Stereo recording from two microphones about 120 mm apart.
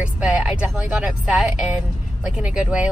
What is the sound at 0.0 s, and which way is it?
Speech, 10° right (ahead or behind).